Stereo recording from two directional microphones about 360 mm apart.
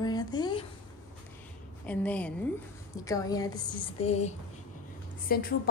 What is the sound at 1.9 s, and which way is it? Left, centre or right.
A woman's voice, centre.